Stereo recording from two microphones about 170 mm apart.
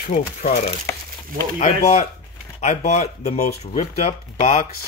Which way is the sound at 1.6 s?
45° left (ahead or behind).